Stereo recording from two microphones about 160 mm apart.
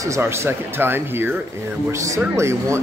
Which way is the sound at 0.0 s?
15° right (ahead or behind).